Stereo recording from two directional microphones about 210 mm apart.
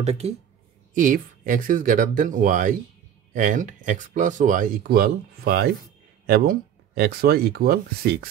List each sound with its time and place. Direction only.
0.0 s speech: 30° right (ahead or behind); by 8.3 s 45° right (ahead or behind)